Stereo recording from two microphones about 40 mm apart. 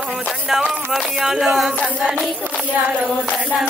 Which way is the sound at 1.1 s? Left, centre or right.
Centre.